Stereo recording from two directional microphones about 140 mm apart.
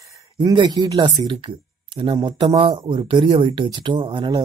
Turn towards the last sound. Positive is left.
turn(degrees=-35)  # may be behind; listen again after turning